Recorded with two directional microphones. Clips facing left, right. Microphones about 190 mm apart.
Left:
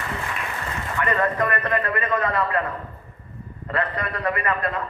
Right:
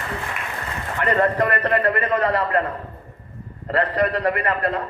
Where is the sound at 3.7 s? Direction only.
35° right (ahead or behind).